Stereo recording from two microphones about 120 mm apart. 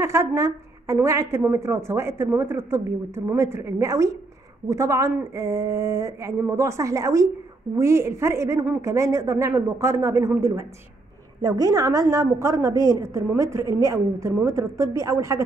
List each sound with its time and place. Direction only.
0.0 s a woman's voice: 25° right (ahead or behind)